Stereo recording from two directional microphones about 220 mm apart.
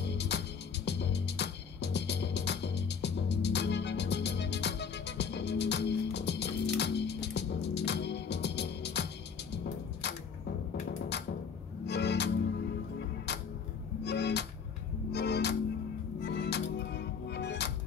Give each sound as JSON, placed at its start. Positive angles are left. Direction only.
{"t": 0.0, "sound": "music", "side_deg": 50}
{"t": 10.9, "sound": "music", "side_deg": 50}
{"t": 14.0, "sound": "music", "side_deg": 50}